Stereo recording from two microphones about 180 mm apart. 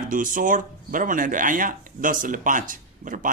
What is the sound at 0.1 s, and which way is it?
Speech, 50° right (ahead or behind).